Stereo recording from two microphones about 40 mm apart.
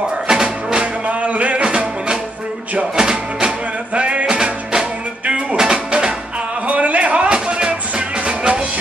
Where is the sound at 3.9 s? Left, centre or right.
Right.